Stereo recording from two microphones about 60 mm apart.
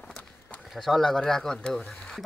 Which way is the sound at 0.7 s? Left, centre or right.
Centre.